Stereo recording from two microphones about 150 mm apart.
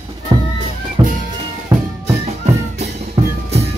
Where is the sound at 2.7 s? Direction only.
45° right (ahead or behind).